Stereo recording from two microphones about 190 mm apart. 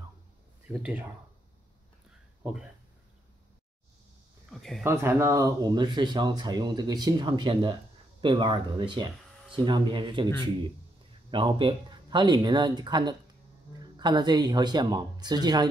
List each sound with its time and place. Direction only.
0.7 s speech: 10° right (ahead or behind)
4.5 s speech: centre (ahead or behind)
4.8 s speech: 15° right (ahead or behind)
11.2 s speech: 25° right (ahead or behind)